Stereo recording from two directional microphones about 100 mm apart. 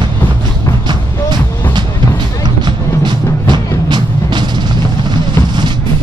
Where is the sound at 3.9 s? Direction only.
50° right (ahead or behind).